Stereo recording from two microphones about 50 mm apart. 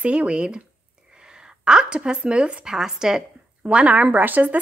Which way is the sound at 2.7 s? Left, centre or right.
Centre.